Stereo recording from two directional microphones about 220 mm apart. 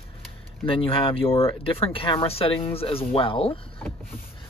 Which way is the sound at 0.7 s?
25° left (ahead or behind).